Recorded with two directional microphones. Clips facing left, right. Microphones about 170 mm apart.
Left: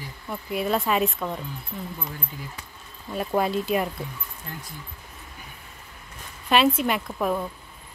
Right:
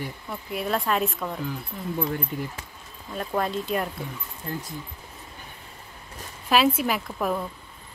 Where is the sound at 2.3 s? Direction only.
65° right (ahead or behind).